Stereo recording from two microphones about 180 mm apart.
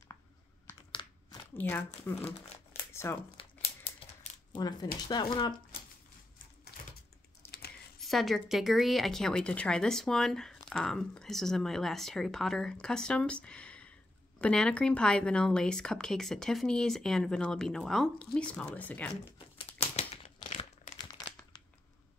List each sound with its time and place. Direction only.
1.0 s crumpling: 25° left (ahead or behind)
1.5 s speech: 10° left (ahead or behind)
3.3 s crumpling: 30° left (ahead or behind)
4.6 s speech: 20° left (ahead or behind)
7.4 s a sound: 15° left (ahead or behind)
8.0 s speech: centre (ahead or behind)
19.3 s crumpling: 35° left (ahead or behind)